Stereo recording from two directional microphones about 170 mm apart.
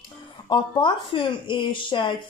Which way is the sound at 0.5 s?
30° left (ahead or behind).